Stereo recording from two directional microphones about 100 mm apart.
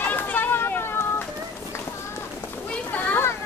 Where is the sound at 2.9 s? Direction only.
20° left (ahead or behind).